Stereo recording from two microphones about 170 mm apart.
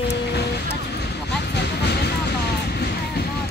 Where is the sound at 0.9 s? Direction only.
75° left (ahead or behind).